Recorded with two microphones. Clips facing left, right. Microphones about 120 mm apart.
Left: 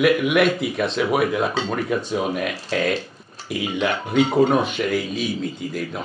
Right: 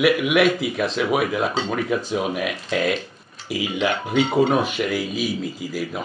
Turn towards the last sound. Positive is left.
turn(degrees=-5)  # may be behind; listen again after turning